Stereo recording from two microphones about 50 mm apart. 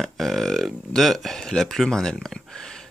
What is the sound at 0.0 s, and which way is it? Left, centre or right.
Speech, centre.